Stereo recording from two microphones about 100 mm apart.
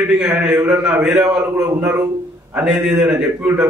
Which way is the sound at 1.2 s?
30° right (ahead or behind).